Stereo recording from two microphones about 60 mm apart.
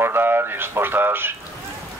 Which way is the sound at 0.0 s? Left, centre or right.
Right.